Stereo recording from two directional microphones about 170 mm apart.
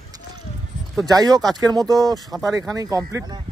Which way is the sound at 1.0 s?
20° right (ahead or behind).